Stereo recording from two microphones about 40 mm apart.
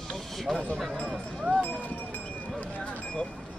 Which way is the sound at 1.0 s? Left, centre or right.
Right.